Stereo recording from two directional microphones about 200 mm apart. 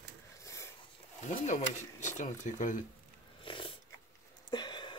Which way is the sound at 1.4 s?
35° left (ahead or behind).